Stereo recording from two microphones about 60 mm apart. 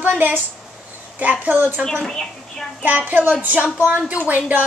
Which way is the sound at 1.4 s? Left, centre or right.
Right.